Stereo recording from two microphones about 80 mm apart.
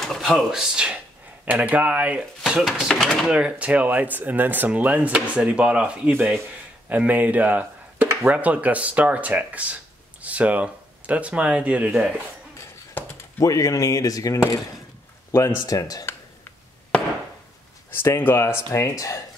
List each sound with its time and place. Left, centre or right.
0.0 s speech: centre
2.4 s speech: centre
2.9 s speech: centre
3.3 s speech: centre
13.4 s speech: left
15.6 s speech: left
18.0 s speech: left